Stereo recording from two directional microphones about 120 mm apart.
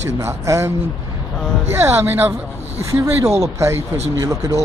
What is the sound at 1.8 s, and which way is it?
Speech, 20° right (ahead or behind).